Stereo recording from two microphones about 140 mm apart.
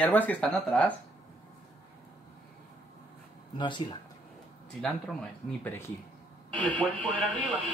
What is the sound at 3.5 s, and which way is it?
Speech, 35° left (ahead or behind).